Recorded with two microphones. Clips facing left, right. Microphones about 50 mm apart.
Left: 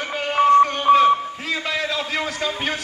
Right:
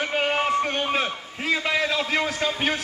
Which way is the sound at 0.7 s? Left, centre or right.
Centre.